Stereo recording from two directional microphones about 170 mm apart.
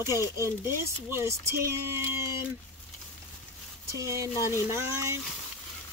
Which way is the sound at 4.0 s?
20° right (ahead or behind).